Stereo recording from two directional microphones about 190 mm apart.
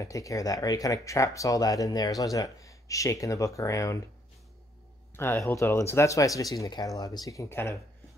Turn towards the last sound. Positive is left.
turn(degrees=15)  # may be behind; listen again after turning